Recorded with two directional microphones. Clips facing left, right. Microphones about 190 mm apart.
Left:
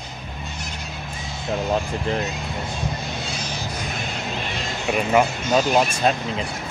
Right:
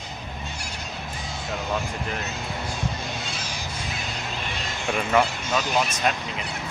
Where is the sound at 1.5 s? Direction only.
35° left (ahead or behind).